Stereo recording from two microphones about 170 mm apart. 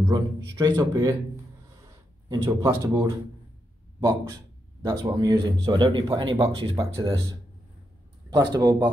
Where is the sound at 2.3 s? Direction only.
15° right (ahead or behind).